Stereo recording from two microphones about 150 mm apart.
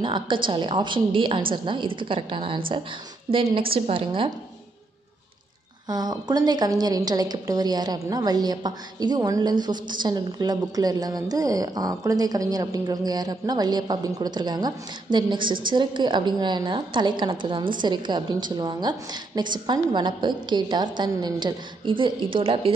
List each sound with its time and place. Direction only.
0.0 s a woman's voice: 35° right (ahead or behind)
5.9 s a woman's voice: 25° right (ahead or behind)